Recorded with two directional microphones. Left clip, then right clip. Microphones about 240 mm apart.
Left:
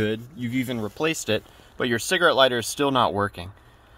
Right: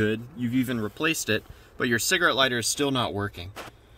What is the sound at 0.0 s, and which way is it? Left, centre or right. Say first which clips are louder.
Speech: even; left.